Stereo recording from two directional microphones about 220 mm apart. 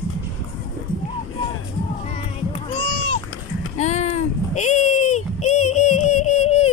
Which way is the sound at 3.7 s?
30° left (ahead or behind).